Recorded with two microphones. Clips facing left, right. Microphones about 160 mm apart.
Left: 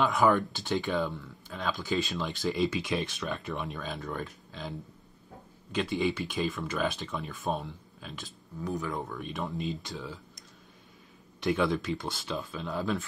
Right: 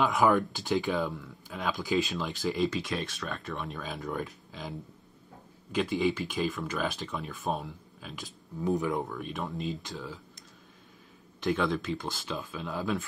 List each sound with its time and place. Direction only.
0.0 s speech: centre (ahead or behind)
8.5 s speech: 20° right (ahead or behind)
9.0 s speech: centre (ahead or behind)
11.4 s speech: centre (ahead or behind)